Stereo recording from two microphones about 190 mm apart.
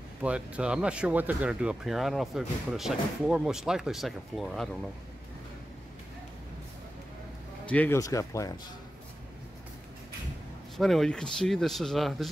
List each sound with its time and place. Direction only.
0.2 s speech: 5° right (ahead or behind)
7.7 s speech: 10° left (ahead or behind)
10.8 s speech: centre (ahead or behind)